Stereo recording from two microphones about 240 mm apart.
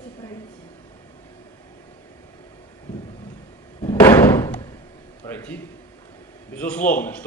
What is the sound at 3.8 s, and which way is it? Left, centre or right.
Slam, centre.